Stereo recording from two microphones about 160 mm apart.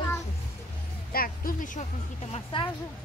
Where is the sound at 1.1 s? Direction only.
65° left (ahead or behind).